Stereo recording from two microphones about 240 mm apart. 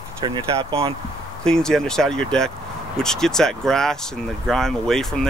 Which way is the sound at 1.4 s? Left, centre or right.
Centre.